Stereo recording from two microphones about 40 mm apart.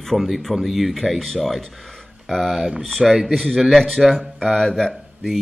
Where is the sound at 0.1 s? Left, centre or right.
Centre.